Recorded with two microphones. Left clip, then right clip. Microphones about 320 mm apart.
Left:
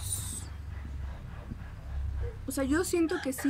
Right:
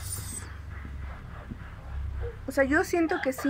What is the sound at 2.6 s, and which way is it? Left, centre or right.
Speech, centre.